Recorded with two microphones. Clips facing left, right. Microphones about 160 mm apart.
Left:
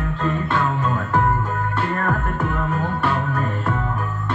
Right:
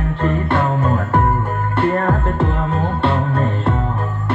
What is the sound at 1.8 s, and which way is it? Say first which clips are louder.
Music: right 8 dB; 30° right (ahead or behind).